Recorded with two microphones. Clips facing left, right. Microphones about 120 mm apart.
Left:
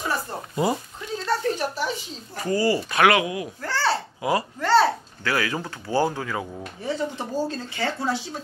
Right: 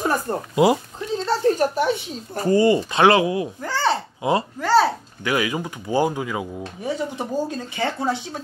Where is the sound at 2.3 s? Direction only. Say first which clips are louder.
Right 6 dB; 30° right (ahead or behind).